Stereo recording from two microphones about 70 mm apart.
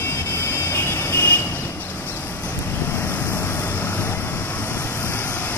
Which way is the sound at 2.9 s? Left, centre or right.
Left.